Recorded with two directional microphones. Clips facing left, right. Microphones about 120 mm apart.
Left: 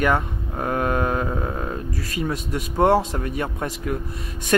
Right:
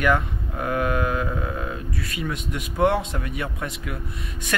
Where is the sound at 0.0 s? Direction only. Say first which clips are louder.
Left 1 dB; 35° left (ahead or behind).